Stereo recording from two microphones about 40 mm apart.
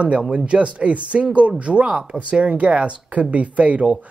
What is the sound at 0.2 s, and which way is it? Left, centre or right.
Speech, right.